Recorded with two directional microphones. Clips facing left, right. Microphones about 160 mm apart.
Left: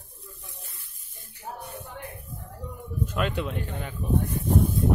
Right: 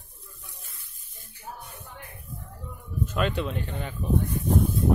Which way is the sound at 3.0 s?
10° left (ahead or behind).